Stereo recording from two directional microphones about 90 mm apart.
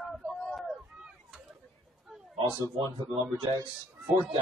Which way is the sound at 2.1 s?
Centre (ahead or behind).